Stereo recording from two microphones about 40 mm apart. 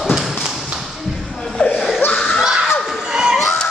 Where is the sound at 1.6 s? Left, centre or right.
Left.